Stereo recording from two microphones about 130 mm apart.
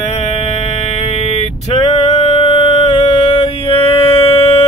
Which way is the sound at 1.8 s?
45° left (ahead or behind).